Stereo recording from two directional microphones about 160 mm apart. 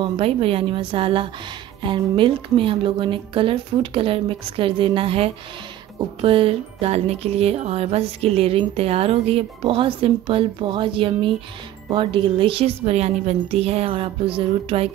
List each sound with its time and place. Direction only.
0.0 s speech: 35° right (ahead or behind)